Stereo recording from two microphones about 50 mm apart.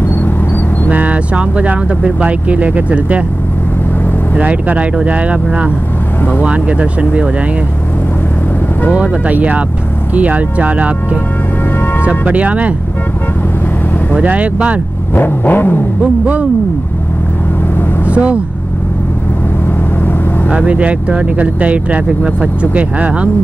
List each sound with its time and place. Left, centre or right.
0.8 s speech: right
4.4 s speech: right
6.4 s speech: right
9.3 s speech: right
12.1 s speech: right
14.2 s speech: right
15.1 s vehicle: left
16.0 s speech: right
18.1 s speech: right
20.5 s speech: right